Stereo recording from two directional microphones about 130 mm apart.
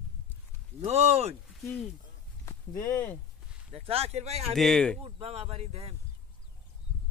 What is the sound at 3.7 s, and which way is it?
Speech, 50° right (ahead or behind).